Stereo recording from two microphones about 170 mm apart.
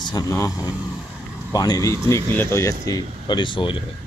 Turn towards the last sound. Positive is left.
turn(degrees=30)  # may be behind; listen again after turning